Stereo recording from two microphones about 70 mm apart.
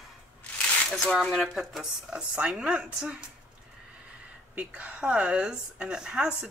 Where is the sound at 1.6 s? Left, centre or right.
Centre.